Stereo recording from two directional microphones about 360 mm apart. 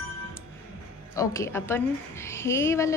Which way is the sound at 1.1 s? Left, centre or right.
Centre.